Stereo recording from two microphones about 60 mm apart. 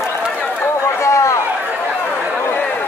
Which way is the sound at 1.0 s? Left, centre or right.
Left.